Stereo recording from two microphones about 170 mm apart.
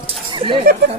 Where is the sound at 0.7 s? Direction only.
60° right (ahead or behind).